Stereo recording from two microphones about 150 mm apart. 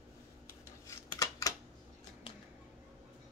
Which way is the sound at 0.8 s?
25° left (ahead or behind).